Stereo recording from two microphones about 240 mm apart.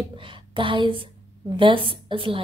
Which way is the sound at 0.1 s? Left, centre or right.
Right.